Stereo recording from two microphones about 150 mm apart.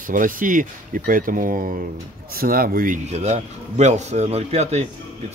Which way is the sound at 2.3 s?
80° right.